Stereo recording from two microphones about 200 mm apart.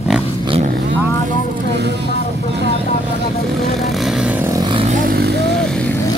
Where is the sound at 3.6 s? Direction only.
Centre (ahead or behind); by 4.8 s 20° right (ahead or behind).